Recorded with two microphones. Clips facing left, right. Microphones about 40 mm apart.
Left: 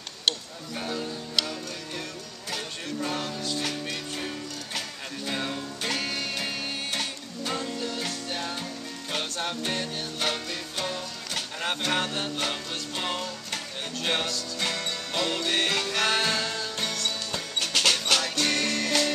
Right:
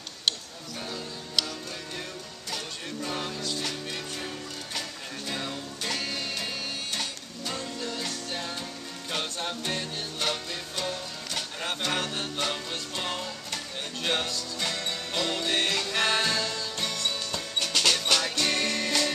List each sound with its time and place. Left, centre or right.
0.7 s music: centre
2.5 s music: centre
4.7 s music: centre
14.6 s music: centre
16.3 s music: centre